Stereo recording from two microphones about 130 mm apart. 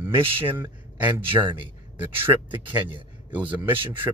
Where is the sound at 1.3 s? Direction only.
40° right (ahead or behind).